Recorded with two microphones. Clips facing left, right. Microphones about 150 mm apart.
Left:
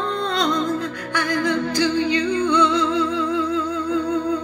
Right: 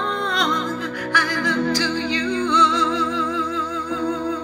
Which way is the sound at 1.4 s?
15° left (ahead or behind).